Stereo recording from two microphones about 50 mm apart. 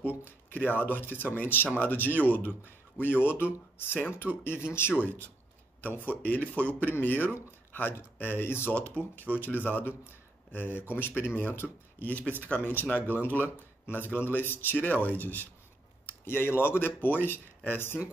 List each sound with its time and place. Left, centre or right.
0.2 s speech: left
5.0 s speech: left
16.1 s speech: left